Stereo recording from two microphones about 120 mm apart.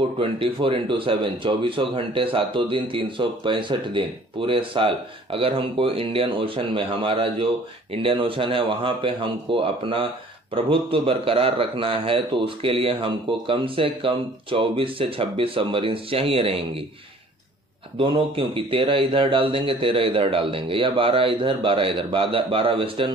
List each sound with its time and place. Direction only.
0.2 s speech: 50° right (ahead or behind)
17.9 s speech: 45° right (ahead or behind)